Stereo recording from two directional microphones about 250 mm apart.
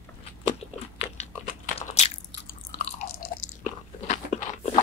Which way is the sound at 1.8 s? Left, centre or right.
Left.